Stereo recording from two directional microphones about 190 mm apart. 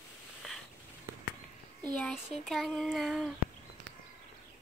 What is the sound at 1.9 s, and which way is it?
Child singing, 5° left (ahead or behind).